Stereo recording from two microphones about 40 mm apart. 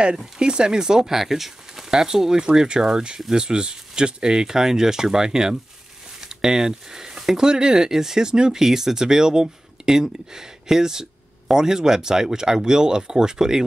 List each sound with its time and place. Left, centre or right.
0.4 s speech: right